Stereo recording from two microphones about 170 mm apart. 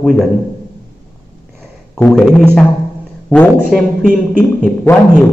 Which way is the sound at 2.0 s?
5° left (ahead or behind).